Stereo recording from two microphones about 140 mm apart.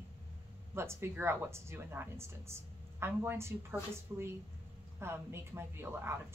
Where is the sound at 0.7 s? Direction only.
15° right (ahead or behind).